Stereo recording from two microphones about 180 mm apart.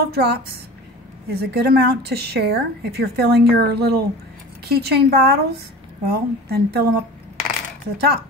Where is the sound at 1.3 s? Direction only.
65° right (ahead or behind).